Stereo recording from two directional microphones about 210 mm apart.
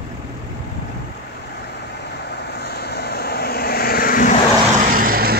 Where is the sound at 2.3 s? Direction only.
50° left (ahead or behind).